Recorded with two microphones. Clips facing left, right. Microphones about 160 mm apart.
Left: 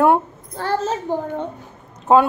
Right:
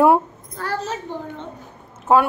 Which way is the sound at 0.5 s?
30° left (ahead or behind).